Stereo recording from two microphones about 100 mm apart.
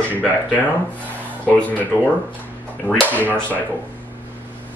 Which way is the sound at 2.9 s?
10° left (ahead or behind).